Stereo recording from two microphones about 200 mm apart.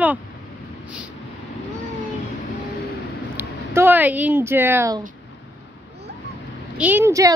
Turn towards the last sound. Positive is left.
turn(degrees=-15)  # may be behind; listen again after turning